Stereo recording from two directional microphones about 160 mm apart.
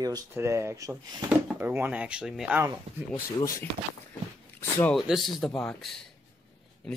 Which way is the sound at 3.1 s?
15° left (ahead or behind).